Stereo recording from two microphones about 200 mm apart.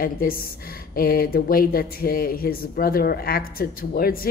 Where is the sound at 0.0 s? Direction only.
45° left (ahead or behind).